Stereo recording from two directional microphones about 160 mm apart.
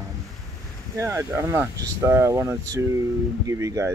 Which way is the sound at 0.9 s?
15° right (ahead or behind).